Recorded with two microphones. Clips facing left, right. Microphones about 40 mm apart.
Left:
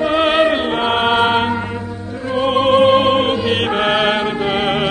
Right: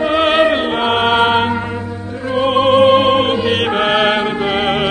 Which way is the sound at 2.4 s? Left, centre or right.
Right.